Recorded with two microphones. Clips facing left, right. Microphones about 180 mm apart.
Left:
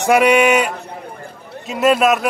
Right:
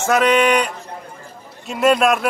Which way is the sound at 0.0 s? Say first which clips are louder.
Left 3 dB; 10° left (ahead or behind).